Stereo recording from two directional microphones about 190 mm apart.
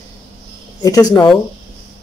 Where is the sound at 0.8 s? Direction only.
20° left (ahead or behind).